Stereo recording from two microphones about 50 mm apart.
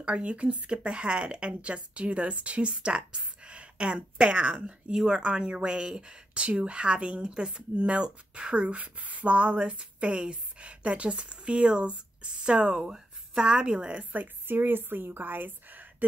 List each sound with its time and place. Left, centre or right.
0.0 s speech: right
14.1 s a woman's voice: right